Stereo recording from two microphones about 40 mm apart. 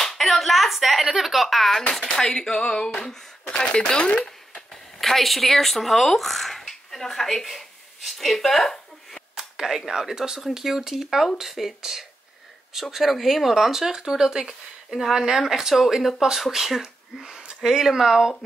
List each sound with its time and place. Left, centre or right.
0.0 s a sound: centre
1.0 s speech: centre; by 3.8 s left
4.6 s speech: centre
9.3 s speech: centre
14.9 s speech: centre